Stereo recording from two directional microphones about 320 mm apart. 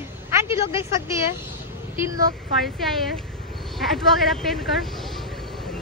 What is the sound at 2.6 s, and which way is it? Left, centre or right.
A woman's voice, centre.